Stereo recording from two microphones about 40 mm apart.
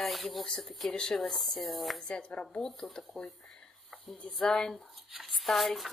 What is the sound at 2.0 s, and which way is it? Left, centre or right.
Speech, left.